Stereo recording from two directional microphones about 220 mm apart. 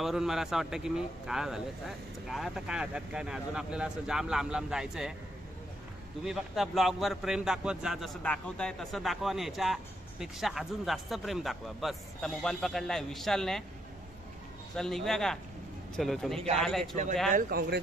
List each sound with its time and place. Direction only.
0.0 s a man's voice: centre (ahead or behind)
6.2 s a man's voice: centre (ahead or behind)
14.8 s a man's voice: centre (ahead or behind)
17.3 s speech: 40° right (ahead or behind)